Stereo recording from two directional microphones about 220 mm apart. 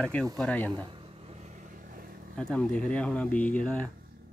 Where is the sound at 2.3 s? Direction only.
5° left (ahead or behind).